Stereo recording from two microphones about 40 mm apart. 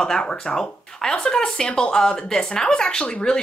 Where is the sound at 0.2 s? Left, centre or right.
Left.